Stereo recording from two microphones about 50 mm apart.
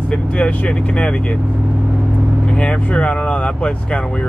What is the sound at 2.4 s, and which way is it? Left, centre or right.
Speech, left.